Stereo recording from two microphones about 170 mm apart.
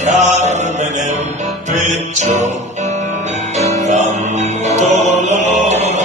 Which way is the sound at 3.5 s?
40° right (ahead or behind).